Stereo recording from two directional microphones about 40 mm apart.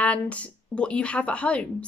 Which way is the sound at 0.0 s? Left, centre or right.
Left.